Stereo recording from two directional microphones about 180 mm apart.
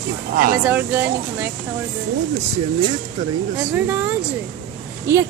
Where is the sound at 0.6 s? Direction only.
10° right (ahead or behind).